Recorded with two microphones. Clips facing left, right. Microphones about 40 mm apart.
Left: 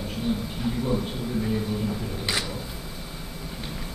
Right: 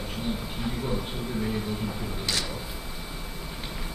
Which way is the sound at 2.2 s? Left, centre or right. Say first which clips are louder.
Left 1 dB; centre.